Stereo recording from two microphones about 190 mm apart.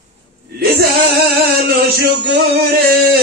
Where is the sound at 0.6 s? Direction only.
55° right (ahead or behind).